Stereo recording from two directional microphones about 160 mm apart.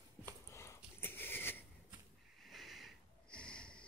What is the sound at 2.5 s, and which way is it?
Sniff, centre (ahead or behind).